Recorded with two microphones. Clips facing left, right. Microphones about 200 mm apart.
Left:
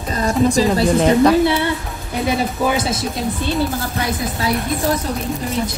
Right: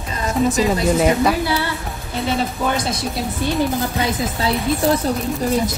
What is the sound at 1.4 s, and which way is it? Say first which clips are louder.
Speech: left 5 dB; 25° left (ahead or behind).